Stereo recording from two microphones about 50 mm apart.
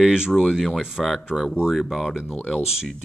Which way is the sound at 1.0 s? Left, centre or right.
Centre.